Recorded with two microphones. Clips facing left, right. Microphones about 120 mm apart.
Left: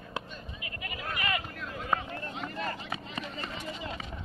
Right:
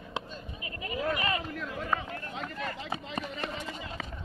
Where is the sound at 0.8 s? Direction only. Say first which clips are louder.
Right 6 dB; 30° right (ahead or behind).